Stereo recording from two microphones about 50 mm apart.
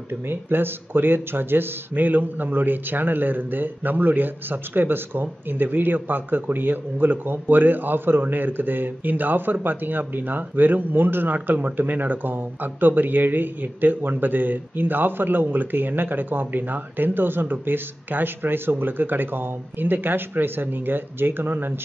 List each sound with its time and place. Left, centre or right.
0.1 s speech: right